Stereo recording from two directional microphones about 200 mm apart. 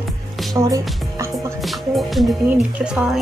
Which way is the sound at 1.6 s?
Centre (ahead or behind).